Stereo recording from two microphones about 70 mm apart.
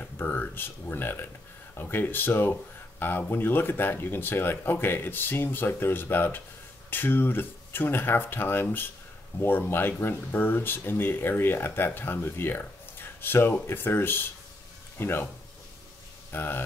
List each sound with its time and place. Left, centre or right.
0.0 s speech: left
16.3 s speech: left